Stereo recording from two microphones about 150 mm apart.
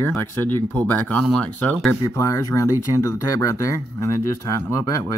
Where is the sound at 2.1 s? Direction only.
20° left (ahead or behind).